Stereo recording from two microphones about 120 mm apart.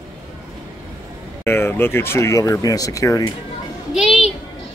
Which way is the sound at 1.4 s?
20° left (ahead or behind).